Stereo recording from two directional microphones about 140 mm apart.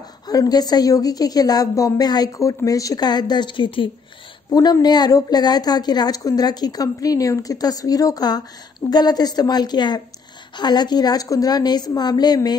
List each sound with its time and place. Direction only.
0.3 s a woman's voice: 25° left (ahead or behind)